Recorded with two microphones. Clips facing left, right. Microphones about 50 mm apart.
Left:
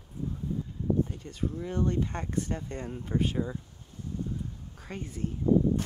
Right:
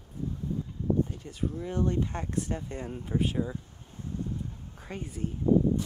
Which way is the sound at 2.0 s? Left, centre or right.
Centre.